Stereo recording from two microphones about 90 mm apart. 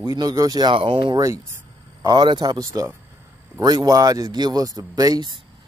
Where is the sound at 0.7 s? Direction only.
65° right (ahead or behind).